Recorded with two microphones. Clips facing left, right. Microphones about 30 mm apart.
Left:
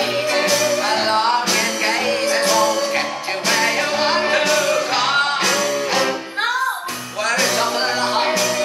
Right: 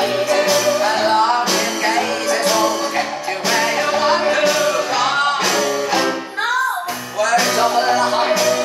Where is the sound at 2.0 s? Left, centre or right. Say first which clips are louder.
Even; left.